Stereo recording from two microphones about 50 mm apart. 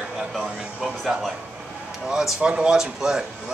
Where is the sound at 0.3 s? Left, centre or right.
Centre.